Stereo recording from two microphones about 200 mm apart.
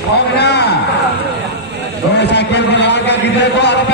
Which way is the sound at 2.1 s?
60° left (ahead or behind).